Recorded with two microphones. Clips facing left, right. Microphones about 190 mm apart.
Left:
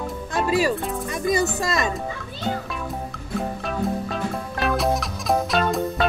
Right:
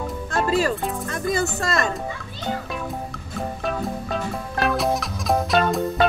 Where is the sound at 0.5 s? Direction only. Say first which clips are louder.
Left 1 dB; 15° left (ahead or behind).